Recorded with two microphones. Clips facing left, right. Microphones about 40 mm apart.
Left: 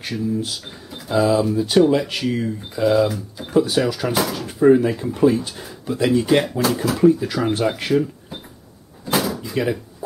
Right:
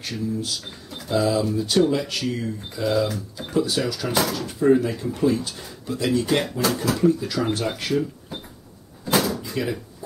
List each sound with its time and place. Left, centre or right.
0.0 s speech: centre
4.6 s speech: centre
7.0 s speech: left
9.0 s door: centre